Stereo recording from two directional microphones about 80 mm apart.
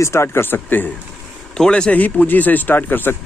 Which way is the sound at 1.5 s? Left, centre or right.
Centre.